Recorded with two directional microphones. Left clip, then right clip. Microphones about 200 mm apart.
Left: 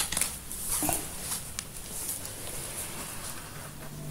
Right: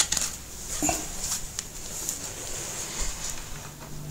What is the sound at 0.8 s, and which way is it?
Dog, 20° right (ahead or behind).